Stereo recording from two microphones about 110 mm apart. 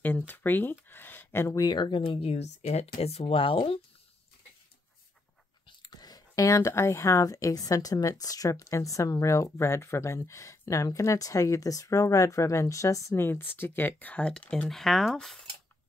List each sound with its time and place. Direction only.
0.3 s speech: 20° left (ahead or behind)
1.6 s speech: 45° left (ahead or behind)
5.8 s speech: 40° left (ahead or behind); by 15.3 s centre (ahead or behind)